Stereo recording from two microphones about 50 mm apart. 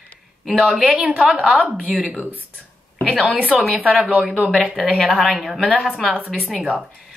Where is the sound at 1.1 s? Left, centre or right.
Centre.